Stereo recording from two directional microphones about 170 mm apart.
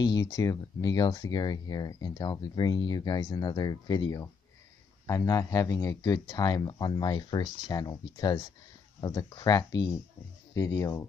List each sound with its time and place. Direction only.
0.0 s speech: 25° left (ahead or behind)